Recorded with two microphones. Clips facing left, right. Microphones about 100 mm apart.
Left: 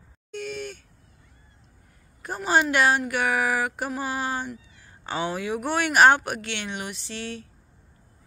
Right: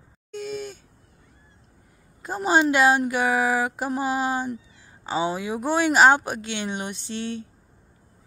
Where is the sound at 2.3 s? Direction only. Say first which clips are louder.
Right 2 dB; 20° right (ahead or behind).